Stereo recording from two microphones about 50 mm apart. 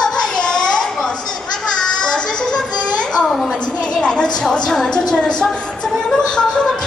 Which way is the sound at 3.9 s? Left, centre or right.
Centre.